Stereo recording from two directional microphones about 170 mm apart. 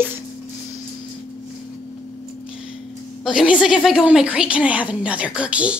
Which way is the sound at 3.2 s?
5° right (ahead or behind).